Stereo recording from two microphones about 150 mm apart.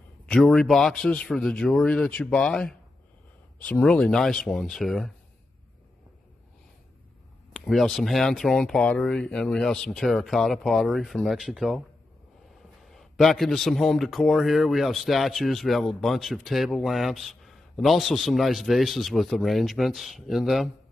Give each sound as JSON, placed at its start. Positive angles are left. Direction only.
{"t": 0.3, "sound": "speech", "side_deg": 0}
{"t": 7.5, "sound": "speech", "side_deg": 0}
{"t": 12.8, "sound": "speech", "side_deg": 0}